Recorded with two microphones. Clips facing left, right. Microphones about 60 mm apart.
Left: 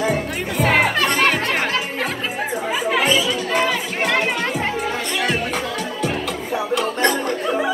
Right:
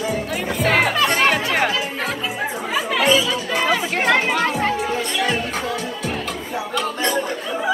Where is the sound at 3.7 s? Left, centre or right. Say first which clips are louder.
Right 2 dB; centre.